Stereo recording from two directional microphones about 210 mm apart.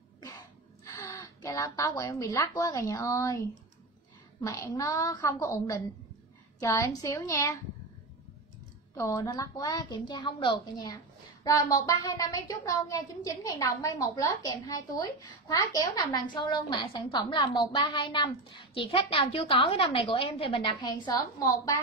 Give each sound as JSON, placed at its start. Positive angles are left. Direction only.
{"t": 0.8, "sound": "a woman's voice", "side_deg": 15}
{"t": 8.9, "sound": "a woman's voice", "side_deg": 15}